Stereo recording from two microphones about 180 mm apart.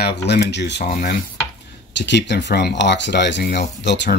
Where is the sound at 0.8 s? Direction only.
50° left (ahead or behind).